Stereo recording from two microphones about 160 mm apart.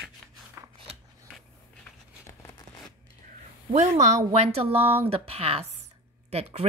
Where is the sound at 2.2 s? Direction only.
20° left (ahead or behind).